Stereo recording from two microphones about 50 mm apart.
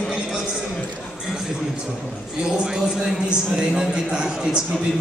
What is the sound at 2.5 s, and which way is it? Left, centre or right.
A man's voice, centre.